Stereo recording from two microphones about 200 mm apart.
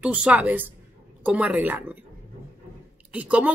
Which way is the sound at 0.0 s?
5° right (ahead or behind).